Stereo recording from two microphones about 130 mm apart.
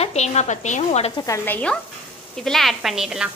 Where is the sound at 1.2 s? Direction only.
25° left (ahead or behind); by 3.3 s 5° right (ahead or behind).